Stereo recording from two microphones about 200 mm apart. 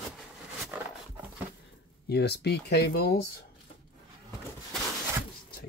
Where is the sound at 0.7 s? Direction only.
10° right (ahead or behind).